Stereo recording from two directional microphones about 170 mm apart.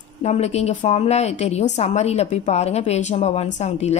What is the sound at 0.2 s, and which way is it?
Speech, 40° left (ahead or behind).